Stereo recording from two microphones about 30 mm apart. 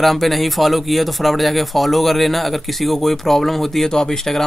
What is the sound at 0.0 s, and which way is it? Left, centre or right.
Speech, centre.